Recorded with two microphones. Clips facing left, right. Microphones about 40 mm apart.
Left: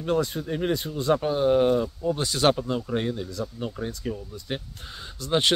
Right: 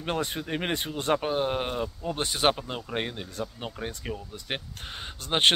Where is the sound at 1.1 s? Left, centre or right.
Right.